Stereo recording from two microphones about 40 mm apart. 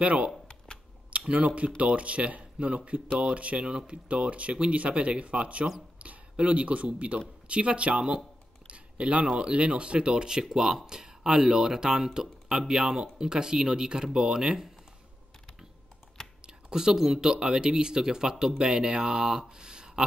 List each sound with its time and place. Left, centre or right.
0.0 s speech: right; by 14.7 s centre
16.4 s a sound: centre
17.2 s speech: centre